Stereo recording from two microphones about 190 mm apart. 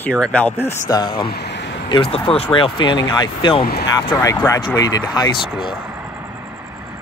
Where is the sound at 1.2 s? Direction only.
60° left (ahead or behind).